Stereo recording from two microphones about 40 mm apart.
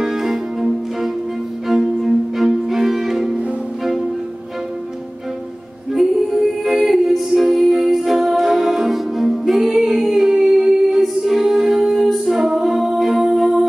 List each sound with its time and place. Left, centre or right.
0.0 s music: centre
1.7 s violin: centre
5.9 s music: centre